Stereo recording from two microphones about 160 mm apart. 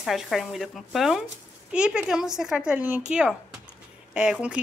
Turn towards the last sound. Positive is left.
turn(degrees=-5)  # may be behind; listen again after turning